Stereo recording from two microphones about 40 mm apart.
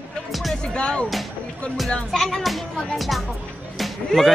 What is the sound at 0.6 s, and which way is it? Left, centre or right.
Speech, left.